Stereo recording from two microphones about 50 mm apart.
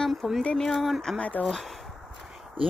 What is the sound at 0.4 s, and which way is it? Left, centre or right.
Speech, centre.